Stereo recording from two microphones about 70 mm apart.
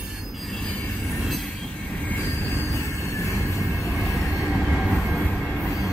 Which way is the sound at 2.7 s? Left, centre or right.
Left.